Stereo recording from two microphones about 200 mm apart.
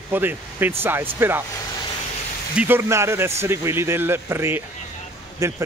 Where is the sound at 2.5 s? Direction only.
10° right (ahead or behind).